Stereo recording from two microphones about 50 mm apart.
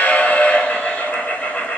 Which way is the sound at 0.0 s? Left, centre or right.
Left.